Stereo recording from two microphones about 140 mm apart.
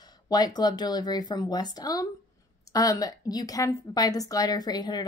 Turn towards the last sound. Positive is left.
turn(degrees=30)  # may be behind; listen again after turning